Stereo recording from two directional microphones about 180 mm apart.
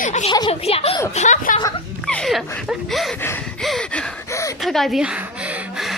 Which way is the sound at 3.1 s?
10° left (ahead or behind).